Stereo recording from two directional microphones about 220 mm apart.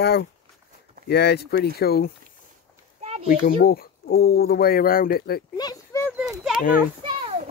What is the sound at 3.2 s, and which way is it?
Speech, 45° left (ahead or behind).